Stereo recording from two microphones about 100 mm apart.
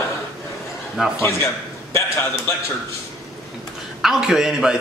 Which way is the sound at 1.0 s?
5° right (ahead or behind).